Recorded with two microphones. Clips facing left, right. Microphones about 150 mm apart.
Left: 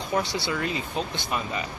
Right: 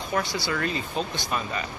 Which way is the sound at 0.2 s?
30° left (ahead or behind).